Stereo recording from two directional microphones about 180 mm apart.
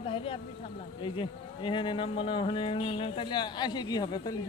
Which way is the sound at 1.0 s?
30° left (ahead or behind).